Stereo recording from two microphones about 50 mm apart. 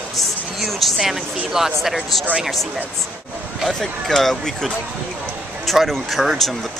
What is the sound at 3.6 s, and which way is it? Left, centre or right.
Speech, centre.